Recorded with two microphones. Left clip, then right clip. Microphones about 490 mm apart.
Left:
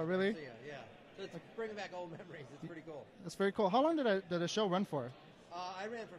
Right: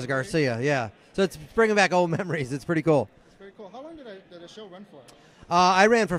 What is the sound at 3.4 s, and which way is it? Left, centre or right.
Speech, left.